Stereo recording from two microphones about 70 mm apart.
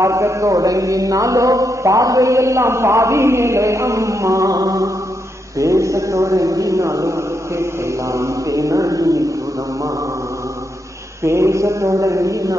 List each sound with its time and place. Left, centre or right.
0.0 s mantra: right
11.2 s mantra: right